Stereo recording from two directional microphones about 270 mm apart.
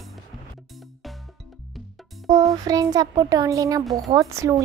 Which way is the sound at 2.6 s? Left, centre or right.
Centre.